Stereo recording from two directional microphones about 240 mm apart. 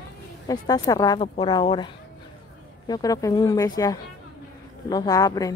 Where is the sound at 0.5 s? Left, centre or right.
Centre.